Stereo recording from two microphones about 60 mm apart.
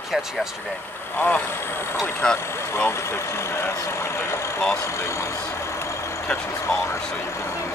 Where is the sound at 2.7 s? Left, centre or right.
Left.